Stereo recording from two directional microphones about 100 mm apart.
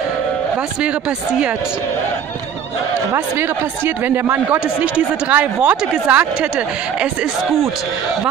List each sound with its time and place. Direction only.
3.1 s speech: 20° right (ahead or behind)